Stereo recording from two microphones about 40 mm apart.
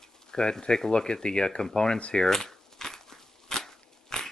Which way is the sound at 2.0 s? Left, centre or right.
Left.